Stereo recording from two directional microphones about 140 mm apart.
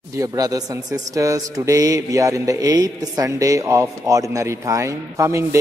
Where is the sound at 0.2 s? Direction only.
25° right (ahead or behind).